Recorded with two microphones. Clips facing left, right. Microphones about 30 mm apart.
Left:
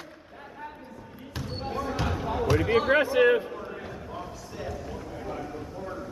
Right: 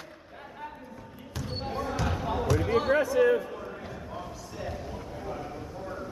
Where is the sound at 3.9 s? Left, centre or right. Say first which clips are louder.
Left 1 dB; centre.